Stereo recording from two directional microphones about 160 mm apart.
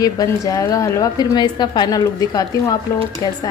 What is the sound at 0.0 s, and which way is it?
A woman's voice, 20° left (ahead or behind).